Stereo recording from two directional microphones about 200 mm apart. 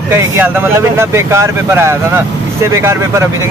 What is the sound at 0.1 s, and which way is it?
Speech, 10° right (ahead or behind).